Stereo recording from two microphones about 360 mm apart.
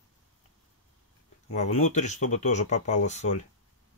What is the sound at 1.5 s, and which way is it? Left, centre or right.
Speech, centre.